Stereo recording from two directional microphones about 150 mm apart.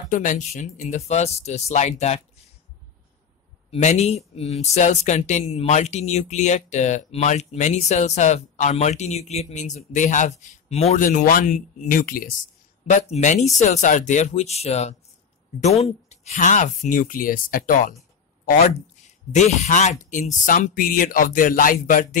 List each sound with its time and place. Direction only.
0.1 s speech: 60° left (ahead or behind)
3.7 s speech: 50° left (ahead or behind)
11.0 s speech: 65° left (ahead or behind)
13.1 s speech: 50° left (ahead or behind)
19.3 s speech: 50° left (ahead or behind)